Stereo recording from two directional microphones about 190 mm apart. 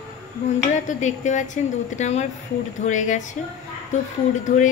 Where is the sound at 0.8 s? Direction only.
40° left (ahead or behind).